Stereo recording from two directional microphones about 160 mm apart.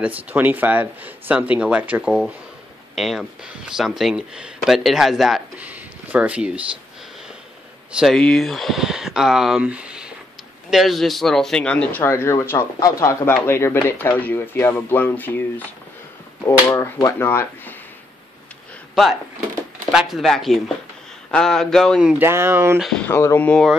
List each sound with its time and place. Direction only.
0.0 s speech: 10° right (ahead or behind)
7.9 s speech: centre (ahead or behind)
19.0 s speech: centre (ahead or behind)
22.2 s speech: 15° right (ahead or behind)
22.8 s speech: centre (ahead or behind)
23.0 s speech: 15° left (ahead or behind)